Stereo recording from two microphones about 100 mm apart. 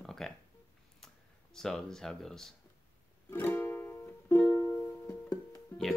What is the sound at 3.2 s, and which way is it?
Music, 20° left (ahead or behind).